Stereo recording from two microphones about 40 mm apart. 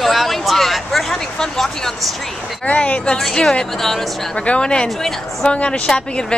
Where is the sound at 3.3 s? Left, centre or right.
Centre.